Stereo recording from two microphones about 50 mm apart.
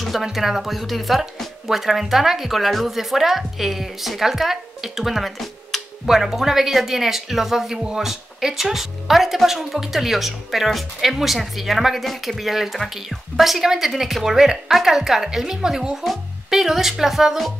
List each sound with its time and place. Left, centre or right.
0.0 s speech: centre